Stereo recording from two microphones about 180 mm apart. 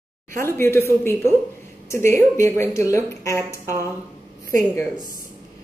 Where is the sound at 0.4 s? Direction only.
15° left (ahead or behind).